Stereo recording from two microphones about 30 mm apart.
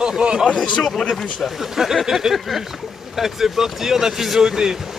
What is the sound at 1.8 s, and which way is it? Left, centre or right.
Speech, centre.